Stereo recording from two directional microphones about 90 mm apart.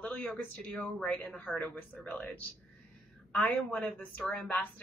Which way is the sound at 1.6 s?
20° left (ahead or behind).